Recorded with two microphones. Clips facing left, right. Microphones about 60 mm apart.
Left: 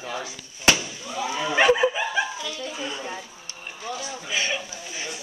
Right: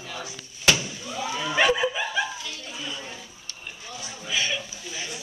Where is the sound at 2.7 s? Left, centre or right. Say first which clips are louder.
Left 4 dB; left.